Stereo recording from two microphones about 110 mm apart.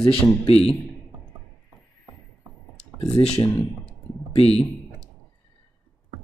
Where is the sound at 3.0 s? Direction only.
70° left (ahead or behind).